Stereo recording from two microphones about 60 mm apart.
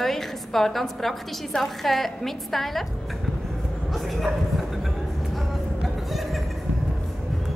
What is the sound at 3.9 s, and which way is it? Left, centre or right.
Bow-wow, centre.